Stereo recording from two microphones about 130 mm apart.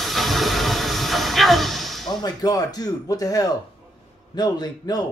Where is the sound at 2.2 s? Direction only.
30° left (ahead or behind).